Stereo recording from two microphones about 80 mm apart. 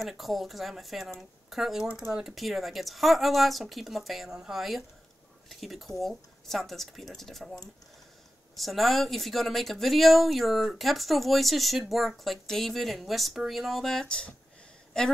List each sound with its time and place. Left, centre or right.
0.0 s speech: centre
8.5 s a woman's voice: centre